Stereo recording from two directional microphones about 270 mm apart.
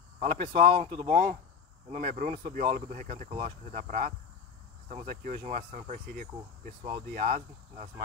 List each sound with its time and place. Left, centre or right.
0.2 s speech: right